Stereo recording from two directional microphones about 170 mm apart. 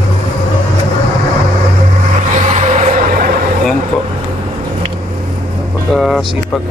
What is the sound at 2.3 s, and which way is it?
Vehicle, 40° right (ahead or behind).